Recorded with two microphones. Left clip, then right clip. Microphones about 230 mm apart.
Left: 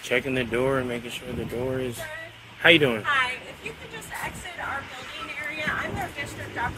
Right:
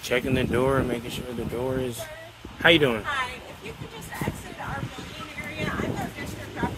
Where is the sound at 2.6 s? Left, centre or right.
Centre.